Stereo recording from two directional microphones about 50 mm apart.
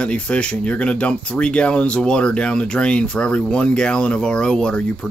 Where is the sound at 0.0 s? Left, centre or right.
Left.